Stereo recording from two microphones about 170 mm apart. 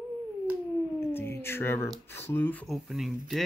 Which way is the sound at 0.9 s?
15° left (ahead or behind).